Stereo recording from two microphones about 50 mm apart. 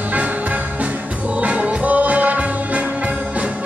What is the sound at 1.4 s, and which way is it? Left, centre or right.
Music, right.